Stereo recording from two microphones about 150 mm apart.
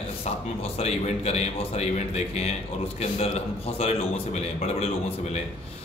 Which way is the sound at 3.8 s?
45° left (ahead or behind).